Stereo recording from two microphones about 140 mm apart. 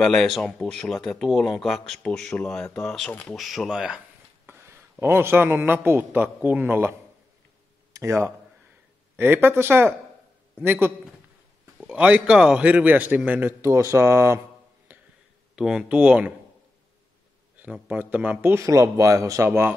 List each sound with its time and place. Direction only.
0.0 s speech: 5° left (ahead or behind)
5.0 s a man's voice: 15° right (ahead or behind)
15.5 s a man's voice: 5° right (ahead or behind)
17.6 s a man's voice: 10° right (ahead or behind)